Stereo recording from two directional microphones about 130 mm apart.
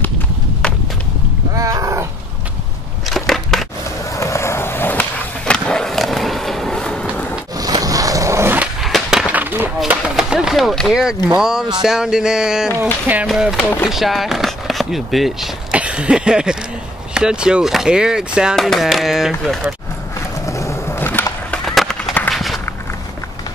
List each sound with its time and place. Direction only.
1.6 s wild animals: 25° right (ahead or behind)
3.1 s crushing: centre (ahead or behind)
4.1 s skateboard: 25° left (ahead or behind); by 7.1 s 5° left (ahead or behind)
7.5 s roaring cats: 30° right (ahead or behind)
8.8 s a sound: centre (ahead or behind)
11.3 s speech: 5° right (ahead or behind)
13.6 s speech: 15° left (ahead or behind)
13.8 s speech: centre (ahead or behind)
20.4 s wood: 25° left (ahead or behind)
21.6 s skateboard: centre (ahead or behind)
22.3 s walk: centre (ahead or behind)